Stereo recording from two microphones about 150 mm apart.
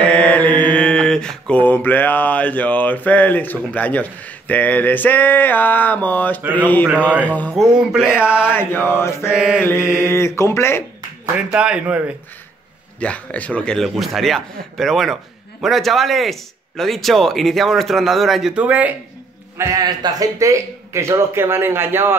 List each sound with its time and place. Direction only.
0.0 s mantra: 10° left (ahead or behind)
6.5 s speech: 10° left (ahead or behind)
7.5 s a man's voice: 5° right (ahead or behind)
8.5 s speech: 15° left (ahead or behind)
9.3 s a man's voice: 5° right (ahead or behind)
9.9 s speech: 15° left (ahead or behind)
11.3 s speech: 10° right (ahead or behind)
13.0 s a man's voice: 10° left (ahead or behind); by 18.9 s 10° right (ahead or behind)
19.5 s a man's voice: 20° right (ahead or behind)